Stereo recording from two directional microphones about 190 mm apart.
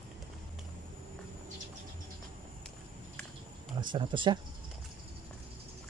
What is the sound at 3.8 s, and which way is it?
Speech, 25° right (ahead or behind).